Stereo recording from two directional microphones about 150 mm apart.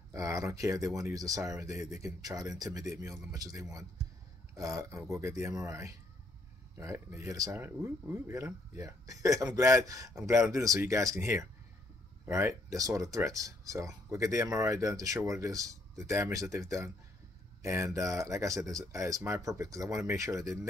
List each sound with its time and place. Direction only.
0.1 s speech: 20° right (ahead or behind)